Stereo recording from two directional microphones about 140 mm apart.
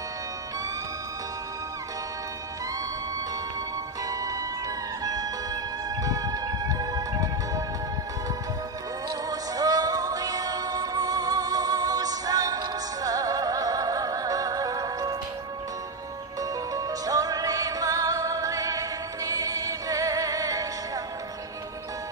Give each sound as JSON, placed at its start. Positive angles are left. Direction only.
{"t": 4.1, "sound": "music", "side_deg": -25}
{"t": 9.3, "sound": "music", "side_deg": -25}
{"t": 16.3, "sound": "music", "side_deg": -25}